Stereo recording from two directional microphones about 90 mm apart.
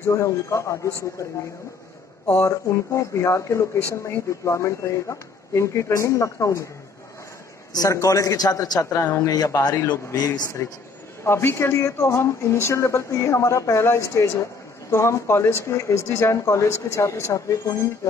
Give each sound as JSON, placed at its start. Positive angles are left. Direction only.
{"t": 0.1, "sound": "speech", "side_deg": 35}
{"t": 2.4, "sound": "speech", "side_deg": 35}
{"t": 7.7, "sound": "a man's voice", "side_deg": 40}
{"t": 11.2, "sound": "speech", "side_deg": 30}